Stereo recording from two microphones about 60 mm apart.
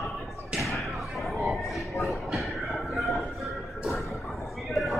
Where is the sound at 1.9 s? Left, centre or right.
Centre.